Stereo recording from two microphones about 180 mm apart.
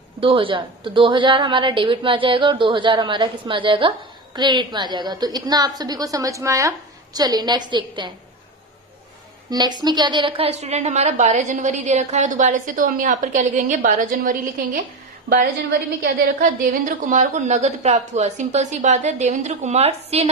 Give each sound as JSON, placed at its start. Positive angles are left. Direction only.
{"t": 0.2, "sound": "a woman's voice", "side_deg": -30}
{"t": 9.5, "sound": "a woman's voice", "side_deg": -25}
{"t": 16.0, "sound": "a woman's voice", "side_deg": -50}